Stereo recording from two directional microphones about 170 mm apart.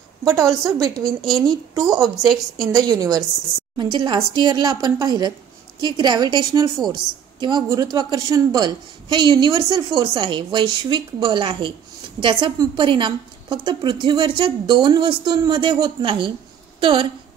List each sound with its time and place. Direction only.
0.3 s a woman's voice: 20° right (ahead or behind)
1.0 s a woman's voice: centre (ahead or behind)
1.5 s a woman's voice: 20° right (ahead or behind)